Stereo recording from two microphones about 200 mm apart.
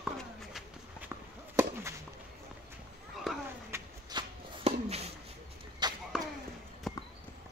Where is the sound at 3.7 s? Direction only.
25° right (ahead or behind).